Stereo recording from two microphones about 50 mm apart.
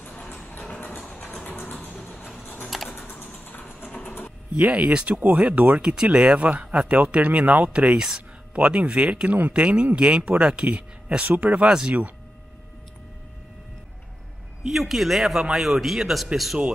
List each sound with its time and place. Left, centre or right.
0.0 s a sound: left
1.0 s music: left
1.4 s vehicle: left
2.7 s typing: centre
3.1 s a sound: left
5.0 s a man's voice: right
5.8 s a man's voice: centre
7.7 s speech: centre
8.5 s a man's voice: right
11.2 s speech: right
11.5 s a man's voice: centre
14.7 s a man's voice: centre